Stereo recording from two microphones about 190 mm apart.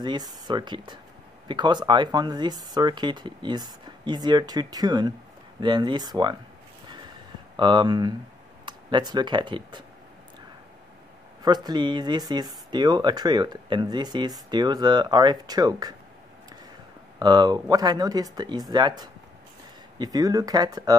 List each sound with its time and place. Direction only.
0.0 s speech: 25° right (ahead or behind)
7.5 s speech: 25° right (ahead or behind)
11.4 s speech: 20° right (ahead or behind)
17.2 s speech: 25° right (ahead or behind)